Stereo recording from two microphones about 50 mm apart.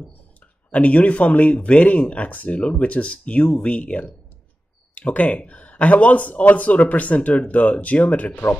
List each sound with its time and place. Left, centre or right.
0.7 s speech: left